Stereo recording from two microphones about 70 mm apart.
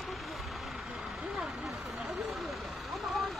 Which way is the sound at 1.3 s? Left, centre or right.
Centre.